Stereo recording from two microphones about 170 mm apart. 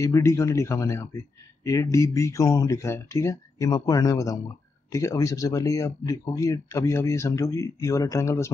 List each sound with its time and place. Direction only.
0.0 s speech: 15° left (ahead or behind)